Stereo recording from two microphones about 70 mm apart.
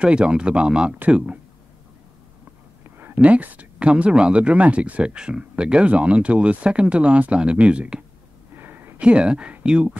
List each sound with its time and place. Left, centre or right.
0.0 s speech: centre
3.2 s speech: right
8.5 s a sound: right
9.0 s speech: centre